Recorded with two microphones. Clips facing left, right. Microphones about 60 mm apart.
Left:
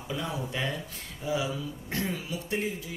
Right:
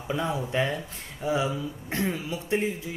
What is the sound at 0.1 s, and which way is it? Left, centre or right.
Speech, right.